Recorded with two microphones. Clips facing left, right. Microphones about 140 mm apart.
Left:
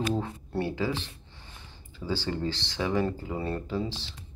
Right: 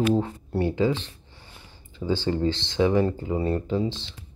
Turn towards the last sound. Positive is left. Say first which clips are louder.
# right 6 dB
turn(degrees=-20)  # may be behind; listen again after turning